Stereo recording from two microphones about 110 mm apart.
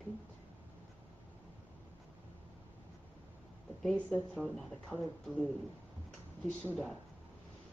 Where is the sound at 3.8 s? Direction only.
5° left (ahead or behind).